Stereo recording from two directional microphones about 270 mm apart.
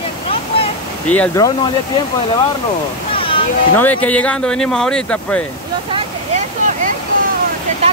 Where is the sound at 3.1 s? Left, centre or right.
Centre.